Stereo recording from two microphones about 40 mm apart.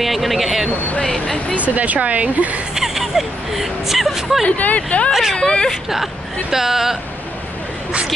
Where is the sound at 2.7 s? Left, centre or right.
Centre.